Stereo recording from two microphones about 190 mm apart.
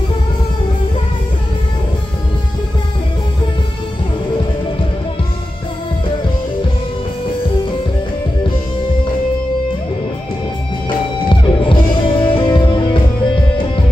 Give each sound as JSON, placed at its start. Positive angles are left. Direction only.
{"t": 11.2, "sound": "music", "side_deg": 25}